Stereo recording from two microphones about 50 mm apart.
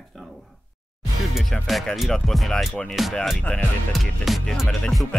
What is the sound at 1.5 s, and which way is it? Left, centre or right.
Speech, centre.